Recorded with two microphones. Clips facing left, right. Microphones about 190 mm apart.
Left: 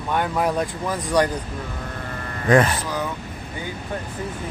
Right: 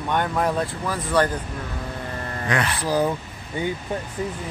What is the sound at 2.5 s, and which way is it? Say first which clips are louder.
Speech: left 9 dB; 40° left (ahead or behind).